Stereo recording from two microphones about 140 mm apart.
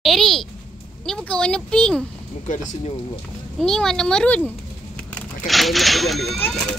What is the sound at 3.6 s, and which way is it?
Speech, 5° left (ahead or behind).